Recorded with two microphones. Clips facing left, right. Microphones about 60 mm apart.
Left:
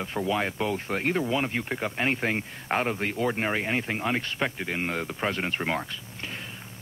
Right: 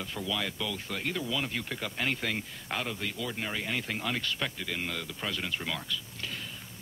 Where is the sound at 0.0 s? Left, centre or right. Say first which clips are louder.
Left 7 dB; left.